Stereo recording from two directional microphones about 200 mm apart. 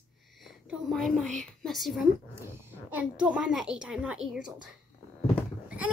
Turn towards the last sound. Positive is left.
turn(degrees=-5)  # may be behind; listen again after turning